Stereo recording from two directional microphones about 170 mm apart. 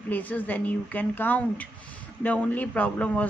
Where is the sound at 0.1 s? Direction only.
10° left (ahead or behind).